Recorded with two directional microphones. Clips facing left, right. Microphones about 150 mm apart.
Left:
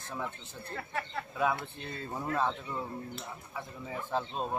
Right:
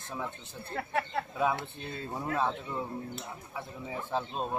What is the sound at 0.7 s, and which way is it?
Speech, 55° right (ahead or behind).